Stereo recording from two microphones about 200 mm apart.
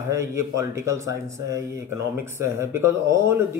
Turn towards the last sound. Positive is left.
turn(degrees=-15)  # may be behind; listen again after turning